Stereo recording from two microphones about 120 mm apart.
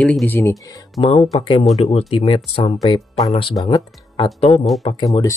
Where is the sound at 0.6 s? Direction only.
30° left (ahead or behind).